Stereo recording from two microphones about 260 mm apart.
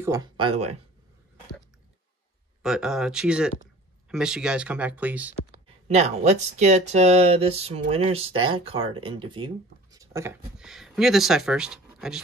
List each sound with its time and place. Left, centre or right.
0.0 s speech: centre
2.6 s speech: centre
5.9 s speech: right; by 12.2 s centre